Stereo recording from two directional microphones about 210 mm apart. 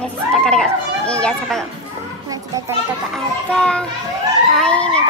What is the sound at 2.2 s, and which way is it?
Children playing, 15° right (ahead or behind).